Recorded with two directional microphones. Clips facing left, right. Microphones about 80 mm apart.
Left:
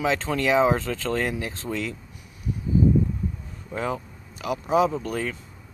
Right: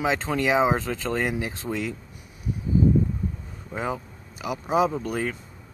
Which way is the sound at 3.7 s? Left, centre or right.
Centre.